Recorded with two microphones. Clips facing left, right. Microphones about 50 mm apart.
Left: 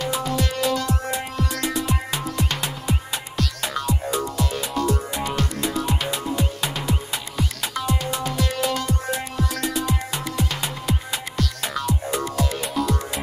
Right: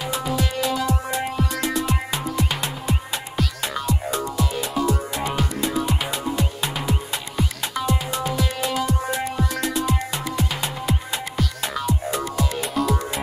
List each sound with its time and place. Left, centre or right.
0.0 s music: centre